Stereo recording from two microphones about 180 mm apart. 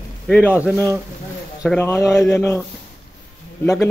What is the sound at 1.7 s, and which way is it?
Speech, 15° left (ahead or behind).